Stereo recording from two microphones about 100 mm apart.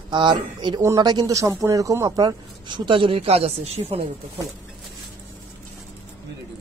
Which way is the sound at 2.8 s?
60° right (ahead or behind).